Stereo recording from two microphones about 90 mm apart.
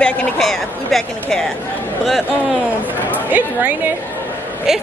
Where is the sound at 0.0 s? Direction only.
5° left (ahead or behind).